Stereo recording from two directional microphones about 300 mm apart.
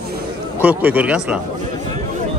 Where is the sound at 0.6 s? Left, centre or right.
Centre.